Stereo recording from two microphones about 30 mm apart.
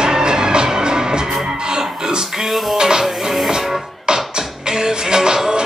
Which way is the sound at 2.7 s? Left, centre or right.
Centre.